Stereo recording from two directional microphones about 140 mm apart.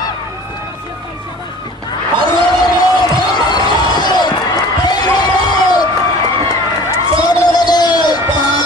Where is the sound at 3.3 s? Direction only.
30° left (ahead or behind).